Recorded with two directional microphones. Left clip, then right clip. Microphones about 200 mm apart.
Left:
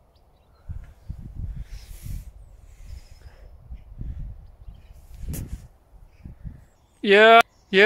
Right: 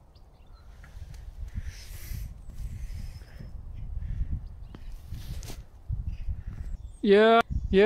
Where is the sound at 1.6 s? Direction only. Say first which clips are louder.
Right 2 dB; 20° left (ahead or behind).